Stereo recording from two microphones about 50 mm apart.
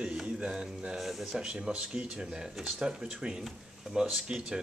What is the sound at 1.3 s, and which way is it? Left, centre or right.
Speech, centre.